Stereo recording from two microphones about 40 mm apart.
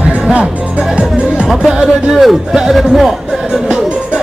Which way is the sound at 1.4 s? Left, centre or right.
Centre.